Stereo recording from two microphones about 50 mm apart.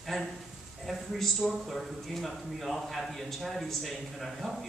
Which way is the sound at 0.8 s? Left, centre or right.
Centre.